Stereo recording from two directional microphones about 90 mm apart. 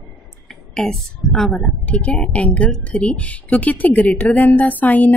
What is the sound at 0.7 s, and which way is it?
Speech, 5° left (ahead or behind).